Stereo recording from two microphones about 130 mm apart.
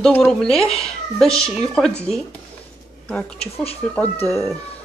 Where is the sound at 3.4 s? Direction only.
50° left (ahead or behind).